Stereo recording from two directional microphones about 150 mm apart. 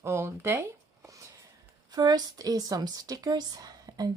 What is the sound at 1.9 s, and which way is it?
A woman's voice, 25° right (ahead or behind).